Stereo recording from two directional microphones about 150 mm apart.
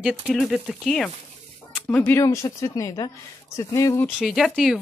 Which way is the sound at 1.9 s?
15° left (ahead or behind).